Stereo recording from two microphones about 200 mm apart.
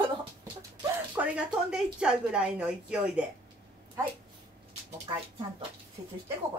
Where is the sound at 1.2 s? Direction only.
10° right (ahead or behind).